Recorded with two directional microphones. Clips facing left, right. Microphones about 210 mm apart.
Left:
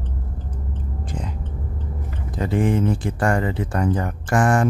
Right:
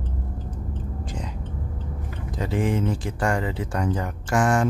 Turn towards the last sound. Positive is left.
turn(degrees=55)  # may be behind; listen again after turning